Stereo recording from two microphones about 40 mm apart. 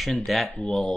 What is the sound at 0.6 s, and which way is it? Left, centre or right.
Speech, centre.